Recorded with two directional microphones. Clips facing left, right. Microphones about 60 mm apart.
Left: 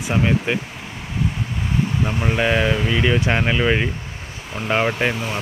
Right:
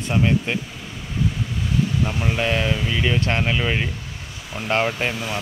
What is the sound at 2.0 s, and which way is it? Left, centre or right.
Speech, centre.